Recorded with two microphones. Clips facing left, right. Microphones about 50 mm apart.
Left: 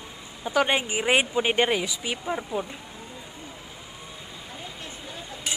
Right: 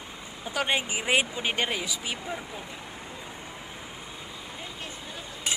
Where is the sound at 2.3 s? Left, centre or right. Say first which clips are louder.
Left 7 dB; left.